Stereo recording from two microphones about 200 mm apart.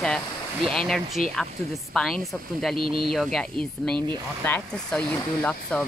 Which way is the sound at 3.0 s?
Centre (ahead or behind).